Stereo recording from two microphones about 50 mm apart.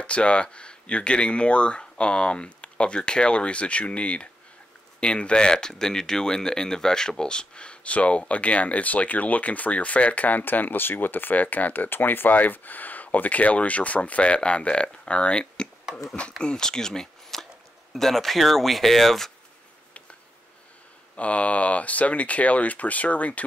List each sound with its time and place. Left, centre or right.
0.0 s speech: left; by 19.3 s centre
21.2 s speech: left